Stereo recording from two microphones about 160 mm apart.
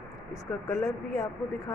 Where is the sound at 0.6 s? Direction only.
20° left (ahead or behind).